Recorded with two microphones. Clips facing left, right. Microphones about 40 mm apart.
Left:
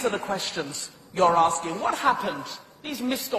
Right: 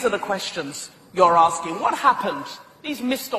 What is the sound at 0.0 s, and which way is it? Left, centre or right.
A man's voice, right.